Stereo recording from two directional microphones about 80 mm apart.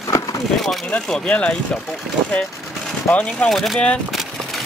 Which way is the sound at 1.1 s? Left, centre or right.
Centre.